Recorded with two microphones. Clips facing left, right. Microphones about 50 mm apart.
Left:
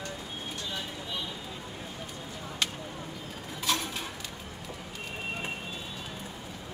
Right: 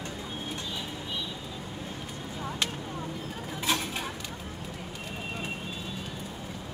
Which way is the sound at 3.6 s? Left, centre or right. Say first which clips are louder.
Right 1 dB; centre.